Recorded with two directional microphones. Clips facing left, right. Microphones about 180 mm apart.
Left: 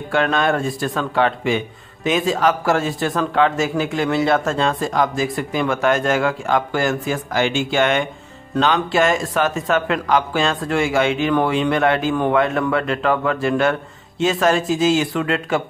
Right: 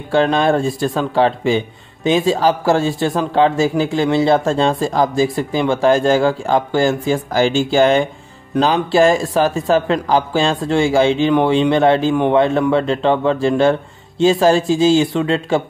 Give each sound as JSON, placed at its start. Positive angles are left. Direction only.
{"t": 0.1, "sound": "speech", "side_deg": -30}